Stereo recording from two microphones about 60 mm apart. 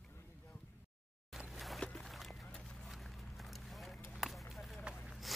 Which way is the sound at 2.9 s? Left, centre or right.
Centre.